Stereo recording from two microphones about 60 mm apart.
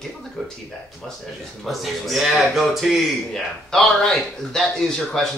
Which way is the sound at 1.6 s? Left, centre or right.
Centre.